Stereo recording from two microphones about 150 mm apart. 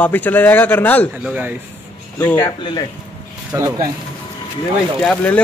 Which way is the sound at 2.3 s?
25° left (ahead or behind).